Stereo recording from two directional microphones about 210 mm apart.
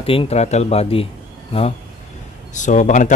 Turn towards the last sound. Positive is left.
turn(degrees=35)  # may be behind; listen again after turning